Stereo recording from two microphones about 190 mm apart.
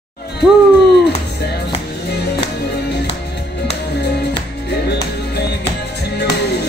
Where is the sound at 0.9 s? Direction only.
60° left (ahead or behind).